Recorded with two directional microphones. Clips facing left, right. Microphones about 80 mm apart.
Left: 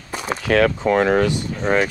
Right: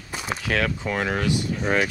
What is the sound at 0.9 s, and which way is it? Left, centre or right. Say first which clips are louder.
Speech: left 9 dB; left.